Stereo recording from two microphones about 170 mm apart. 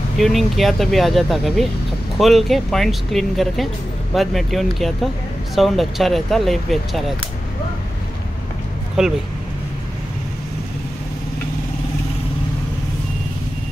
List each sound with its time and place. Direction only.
0.2 s speech: centre (ahead or behind)
9.0 s speech: centre (ahead or behind)